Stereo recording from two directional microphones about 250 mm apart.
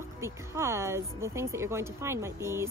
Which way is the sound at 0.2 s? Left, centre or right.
Centre.